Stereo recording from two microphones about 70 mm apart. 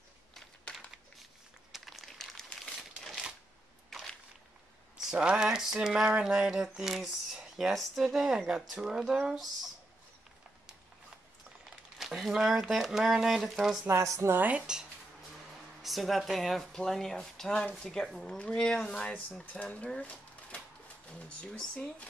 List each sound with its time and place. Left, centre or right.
0.3 s a sound: centre
1.7 s crumpling: centre
5.0 s a sound: centre
12.0 s speech: centre
13.8 s speech: right
14.3 s speech: right
15.8 s speech: centre
19.9 s a sound: centre
21.1 s speech: centre